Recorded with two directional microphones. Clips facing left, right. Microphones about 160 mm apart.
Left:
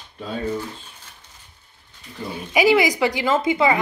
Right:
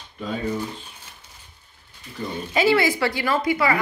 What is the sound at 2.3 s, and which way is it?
A woman's voice, 15° left (ahead or behind).